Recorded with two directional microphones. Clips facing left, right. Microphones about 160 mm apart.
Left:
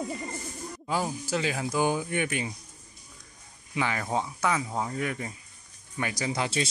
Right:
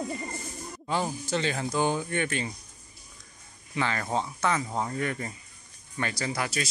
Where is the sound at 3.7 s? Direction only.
10° left (ahead or behind).